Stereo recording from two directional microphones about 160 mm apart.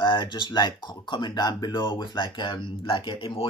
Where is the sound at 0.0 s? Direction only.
30° left (ahead or behind).